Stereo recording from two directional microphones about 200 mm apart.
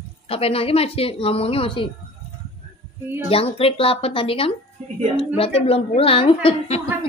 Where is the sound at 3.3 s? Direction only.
30° left (ahead or behind).